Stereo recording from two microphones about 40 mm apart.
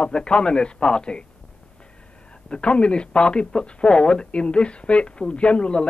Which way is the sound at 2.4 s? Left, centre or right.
Left.